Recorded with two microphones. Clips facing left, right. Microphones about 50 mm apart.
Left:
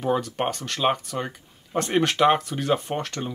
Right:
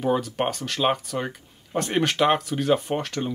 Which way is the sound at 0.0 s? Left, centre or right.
Centre.